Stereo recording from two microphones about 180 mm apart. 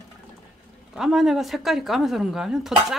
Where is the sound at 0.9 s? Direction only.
Centre (ahead or behind).